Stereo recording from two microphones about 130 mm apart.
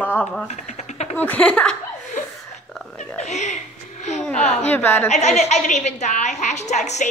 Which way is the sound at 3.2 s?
60° left (ahead or behind).